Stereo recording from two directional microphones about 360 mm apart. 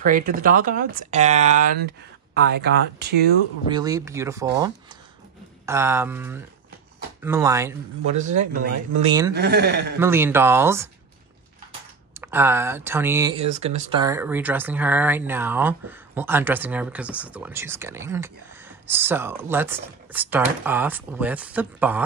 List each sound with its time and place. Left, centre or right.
0.0 s speech: right
3.7 s speech: centre
9.3 s speech: right
9.9 s speech: centre
12.1 s speech: centre